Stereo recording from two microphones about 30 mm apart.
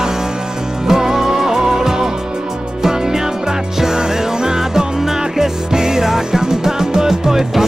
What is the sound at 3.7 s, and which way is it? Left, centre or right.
Music, centre.